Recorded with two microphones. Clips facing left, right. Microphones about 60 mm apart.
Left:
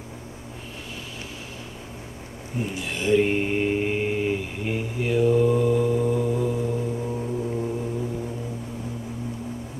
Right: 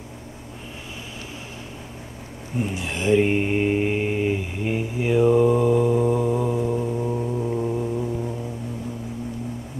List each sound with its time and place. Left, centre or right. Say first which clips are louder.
2.7 s speech: right 1 dB; right
3.2 s mantra: right 1 dB; centre